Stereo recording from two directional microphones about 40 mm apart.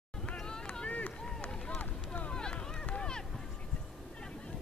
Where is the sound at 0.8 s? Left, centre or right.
Left.